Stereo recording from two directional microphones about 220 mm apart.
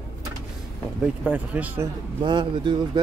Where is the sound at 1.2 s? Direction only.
5° right (ahead or behind).